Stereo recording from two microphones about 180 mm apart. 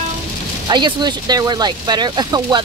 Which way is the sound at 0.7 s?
25° right (ahead or behind).